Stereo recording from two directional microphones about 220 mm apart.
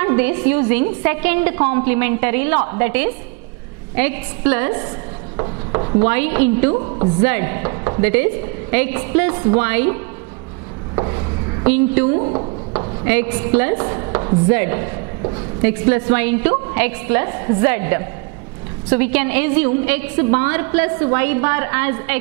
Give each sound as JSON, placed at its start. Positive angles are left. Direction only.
{"t": 0.0, "sound": "a woman's voice", "side_deg": -10}
{"t": 5.4, "sound": "chopping", "side_deg": -25}
{"t": 6.0, "sound": "a woman's voice", "side_deg": -10}
{"t": 6.7, "sound": "a woman's voice", "side_deg": -25}
{"t": 7.2, "sound": "a woman's voice", "side_deg": -10}
{"t": 11.6, "sound": "a woman's voice", "side_deg": -10}
{"t": 12.2, "sound": "a sound", "side_deg": -25}
{"t": 13.1, "sound": "a woman's voice", "side_deg": -10}